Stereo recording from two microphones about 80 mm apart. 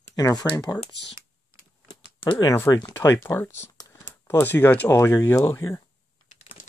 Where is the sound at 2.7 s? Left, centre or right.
Left.